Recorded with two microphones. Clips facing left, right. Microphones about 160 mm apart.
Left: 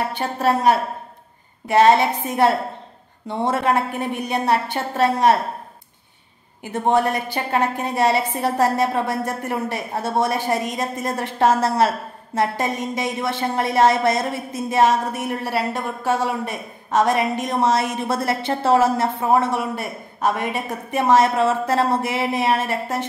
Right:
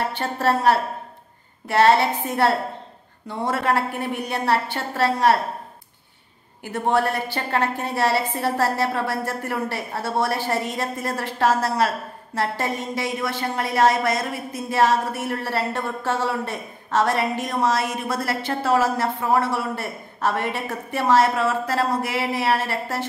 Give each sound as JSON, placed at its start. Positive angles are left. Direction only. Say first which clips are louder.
{"t": 0.1, "sound": "a woman's voice", "louder": "left 2 dB", "side_deg": 15}
{"t": 6.6, "sound": "a woman's voice", "louder": "left 2 dB", "side_deg": 20}